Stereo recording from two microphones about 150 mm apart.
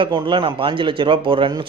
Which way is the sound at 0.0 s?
35° right (ahead or behind).